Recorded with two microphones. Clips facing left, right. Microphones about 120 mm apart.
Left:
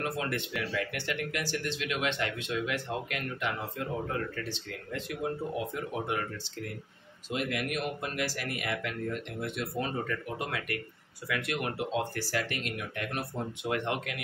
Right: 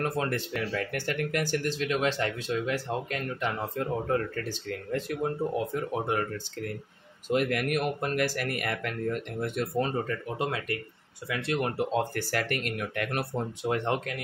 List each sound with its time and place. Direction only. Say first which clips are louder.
0.0 s speech: right 4 dB; 40° right (ahead or behind)
7.2 s speech: right 6 dB; 50° right (ahead or behind)
13.6 s speech: right 3 dB; 35° right (ahead or behind)